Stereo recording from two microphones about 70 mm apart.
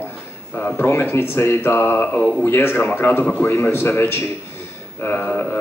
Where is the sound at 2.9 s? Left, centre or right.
Left.